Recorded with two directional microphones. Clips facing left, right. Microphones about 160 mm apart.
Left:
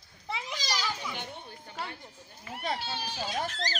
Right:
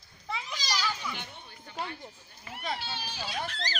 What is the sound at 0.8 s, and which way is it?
Children playing, 15° left (ahead or behind).